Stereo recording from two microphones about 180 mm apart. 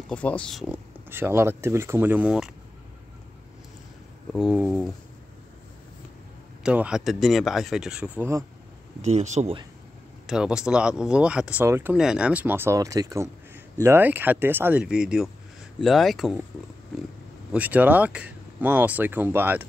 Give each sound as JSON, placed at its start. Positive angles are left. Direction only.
{"t": 0.1, "sound": "speech", "side_deg": 5}
{"t": 1.1, "sound": "speech", "side_deg": -15}
{"t": 4.3, "sound": "speech", "side_deg": -5}
{"t": 6.6, "sound": "speech", "side_deg": -5}
{"t": 9.0, "sound": "speech", "side_deg": -40}
{"t": 10.2, "sound": "speech", "side_deg": -5}
{"t": 17.5, "sound": "speech", "side_deg": -10}